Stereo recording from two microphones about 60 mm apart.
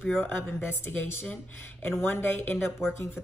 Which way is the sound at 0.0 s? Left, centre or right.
Left.